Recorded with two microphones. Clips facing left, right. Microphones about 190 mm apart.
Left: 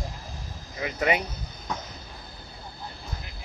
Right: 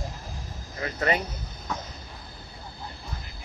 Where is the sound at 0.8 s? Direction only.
10° left (ahead or behind).